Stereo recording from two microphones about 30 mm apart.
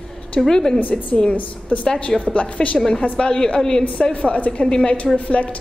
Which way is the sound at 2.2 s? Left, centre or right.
Left.